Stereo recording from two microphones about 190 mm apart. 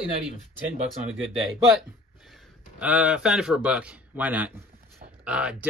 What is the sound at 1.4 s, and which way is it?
A man's voice, centre (ahead or behind).